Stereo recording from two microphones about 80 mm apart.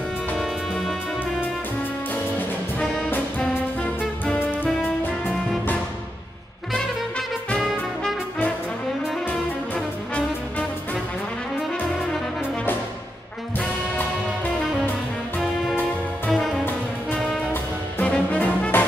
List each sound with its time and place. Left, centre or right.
0.4 s music: centre
3.3 s music: centre
6.7 s music: centre
7.6 s music: centre
16.3 s music: centre
18.0 s brass instrument: centre